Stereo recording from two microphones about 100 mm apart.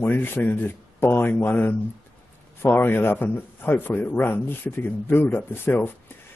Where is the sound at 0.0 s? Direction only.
20° left (ahead or behind).